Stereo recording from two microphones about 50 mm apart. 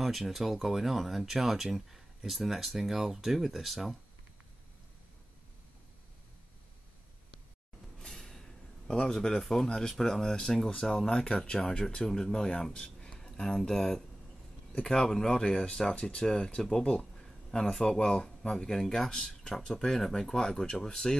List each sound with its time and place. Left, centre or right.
0.0 s speech: centre
8.0 s a man's voice: centre
17.2 s a sound: centre
17.8 s speech: centre